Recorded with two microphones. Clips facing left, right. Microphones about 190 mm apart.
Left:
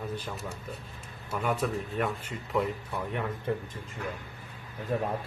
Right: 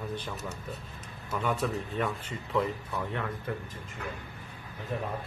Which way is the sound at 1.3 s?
10° left (ahead or behind).